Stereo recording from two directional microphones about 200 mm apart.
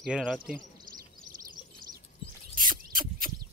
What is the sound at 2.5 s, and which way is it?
Rodents, 45° right (ahead or behind).